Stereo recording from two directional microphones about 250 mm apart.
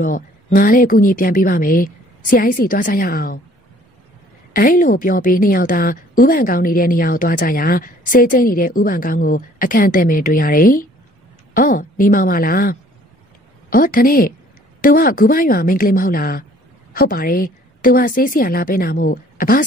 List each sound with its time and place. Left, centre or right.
0.0 s a woman's voice: left
4.6 s a woman's voice: left